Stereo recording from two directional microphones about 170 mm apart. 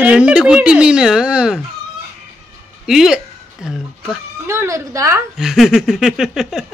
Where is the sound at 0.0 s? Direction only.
5° right (ahead or behind).